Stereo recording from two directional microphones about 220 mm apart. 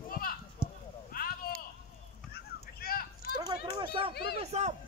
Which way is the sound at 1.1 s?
40° left (ahead or behind).